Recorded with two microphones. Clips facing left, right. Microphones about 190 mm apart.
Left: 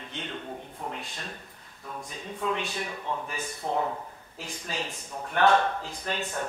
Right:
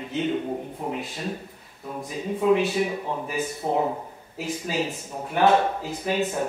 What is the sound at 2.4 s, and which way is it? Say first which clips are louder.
Speech: right 10 dB; 5° right (ahead or behind).